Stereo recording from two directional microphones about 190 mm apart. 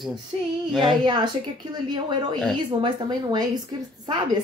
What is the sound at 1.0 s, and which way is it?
Speech, 25° right (ahead or behind).